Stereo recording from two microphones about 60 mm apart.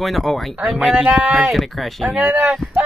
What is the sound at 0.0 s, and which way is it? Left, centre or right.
Speech, centre.